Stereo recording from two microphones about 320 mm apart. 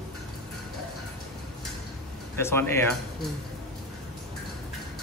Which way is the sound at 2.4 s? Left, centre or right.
Centre.